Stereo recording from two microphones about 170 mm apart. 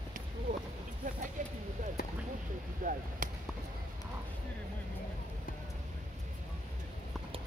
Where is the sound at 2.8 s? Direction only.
55° right (ahead or behind).